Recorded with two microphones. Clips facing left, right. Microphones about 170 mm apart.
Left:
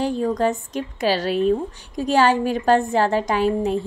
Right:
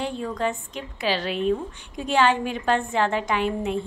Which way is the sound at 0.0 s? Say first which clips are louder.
Left 6 dB; 40° left (ahead or behind).